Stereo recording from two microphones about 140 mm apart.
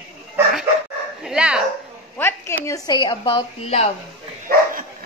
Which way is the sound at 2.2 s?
20° left (ahead or behind).